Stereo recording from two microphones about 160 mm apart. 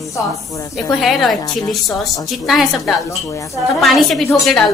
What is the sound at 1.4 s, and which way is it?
Speech, 25° left (ahead or behind).